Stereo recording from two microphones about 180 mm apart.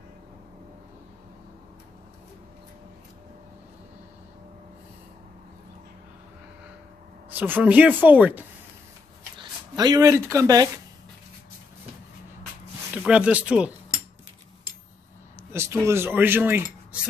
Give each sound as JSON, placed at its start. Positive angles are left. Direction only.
{"t": 7.2, "sound": "speech", "side_deg": -10}
{"t": 9.4, "sound": "speech", "side_deg": -25}
{"t": 12.9, "sound": "speech", "side_deg": -5}
{"t": 15.5, "sound": "speech", "side_deg": -15}